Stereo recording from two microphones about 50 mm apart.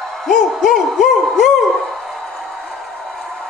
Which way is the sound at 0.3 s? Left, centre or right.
Centre.